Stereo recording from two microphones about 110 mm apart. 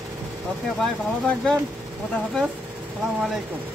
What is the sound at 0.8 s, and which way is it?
Speech, 5° left (ahead or behind).